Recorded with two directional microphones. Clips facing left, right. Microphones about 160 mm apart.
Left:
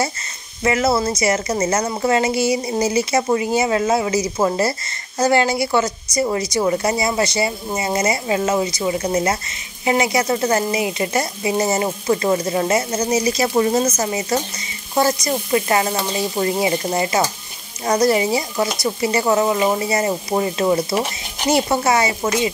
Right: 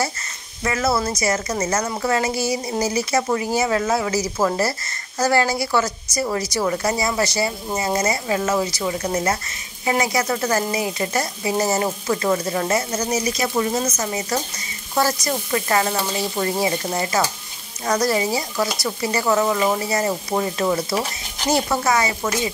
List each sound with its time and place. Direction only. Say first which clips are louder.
0.7 s speech: left 4 dB; 20° left (ahead or behind)
2.5 s speech: left 3 dB; centre (ahead or behind)
2.9 s speech: left 3 dB; 20° left (ahead or behind)
3.5 s sizzle: left 1 dB; 15° left (ahead or behind)
4.4 s speech: left 1 dB; 20° left (ahead or behind)
6.1 s sizzle: left 3 dB; 15° left (ahead or behind)
6.5 s speech: left 3 dB; 20° left (ahead or behind)
7.8 s sizzle: left 2 dB; 15° left (ahead or behind)
9.8 s speech: left 3 dB; 20° left (ahead or behind)
10.7 s sizzle: left 3 dB; 10° left (ahead or behind)
12.1 s speech: left 4 dB; 20° left (ahead or behind)
15.0 s sizzle: left 3 dB; 15° left (ahead or behind)
17.8 s speech: left 4 dB; 25° left (ahead or behind)